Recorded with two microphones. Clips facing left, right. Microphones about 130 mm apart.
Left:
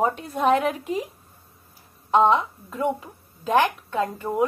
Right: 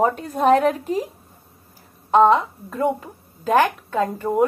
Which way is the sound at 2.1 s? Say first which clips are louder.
Right 4 dB; 45° right (ahead or behind).